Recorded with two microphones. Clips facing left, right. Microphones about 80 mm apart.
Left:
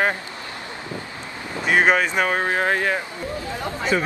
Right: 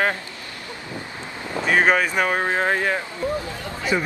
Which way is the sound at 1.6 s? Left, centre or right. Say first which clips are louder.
Left 1 dB; centre.